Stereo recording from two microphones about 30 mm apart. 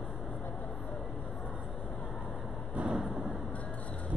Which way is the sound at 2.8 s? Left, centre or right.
Right.